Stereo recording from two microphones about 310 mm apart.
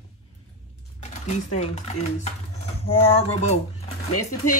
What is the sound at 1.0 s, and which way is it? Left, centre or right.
Speech, left.